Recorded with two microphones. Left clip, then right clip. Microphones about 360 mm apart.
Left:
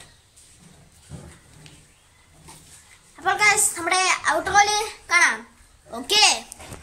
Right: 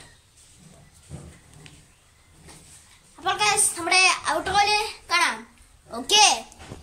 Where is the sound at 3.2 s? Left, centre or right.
Centre.